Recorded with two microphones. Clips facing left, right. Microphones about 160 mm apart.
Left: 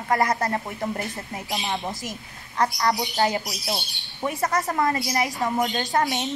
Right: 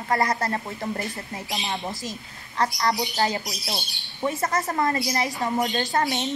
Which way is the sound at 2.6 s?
15° left (ahead or behind).